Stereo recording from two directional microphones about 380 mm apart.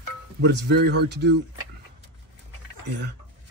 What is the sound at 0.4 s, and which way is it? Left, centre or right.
Speech, right.